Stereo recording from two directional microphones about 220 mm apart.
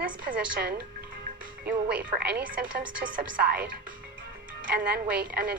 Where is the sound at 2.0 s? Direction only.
40° right (ahead or behind).